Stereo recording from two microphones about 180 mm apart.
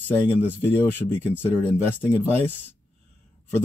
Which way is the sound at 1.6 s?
15° left (ahead or behind).